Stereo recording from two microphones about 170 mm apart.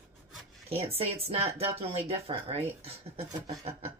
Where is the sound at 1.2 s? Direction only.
35° right (ahead or behind).